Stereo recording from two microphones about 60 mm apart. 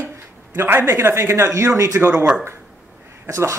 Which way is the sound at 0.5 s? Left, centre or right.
Right.